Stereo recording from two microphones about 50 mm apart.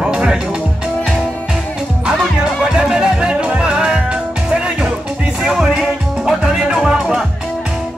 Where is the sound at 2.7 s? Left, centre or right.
Centre.